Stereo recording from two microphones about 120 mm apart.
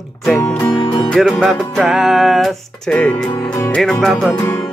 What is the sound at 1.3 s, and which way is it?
Music, centre (ahead or behind).